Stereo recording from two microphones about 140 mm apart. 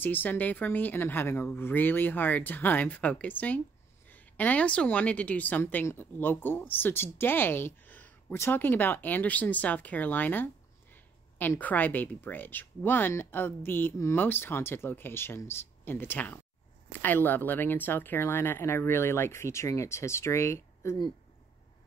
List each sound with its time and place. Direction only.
0.0 s a woman's voice: 15° left (ahead or behind)